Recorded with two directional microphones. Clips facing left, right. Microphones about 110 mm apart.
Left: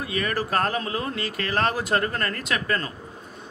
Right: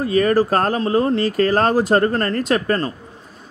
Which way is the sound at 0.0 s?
35° right (ahead or behind).